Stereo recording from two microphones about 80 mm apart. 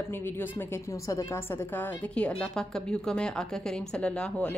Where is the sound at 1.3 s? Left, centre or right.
Left.